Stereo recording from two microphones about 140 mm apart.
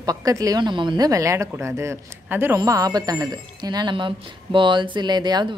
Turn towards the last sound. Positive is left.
turn(degrees=-30)  # may be behind; listen again after turning